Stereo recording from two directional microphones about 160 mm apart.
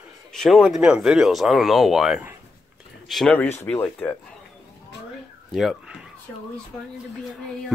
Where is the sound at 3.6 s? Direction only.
10° left (ahead or behind).